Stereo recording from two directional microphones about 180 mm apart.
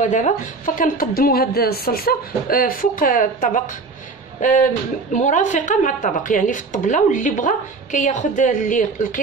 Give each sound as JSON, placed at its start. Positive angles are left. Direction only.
{"t": 0.7, "sound": "a woman's voice", "side_deg": 55}